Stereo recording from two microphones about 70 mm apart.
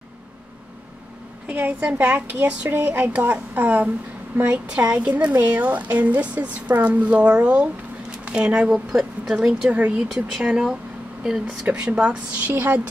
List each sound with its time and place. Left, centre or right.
1.5 s a woman's voice: centre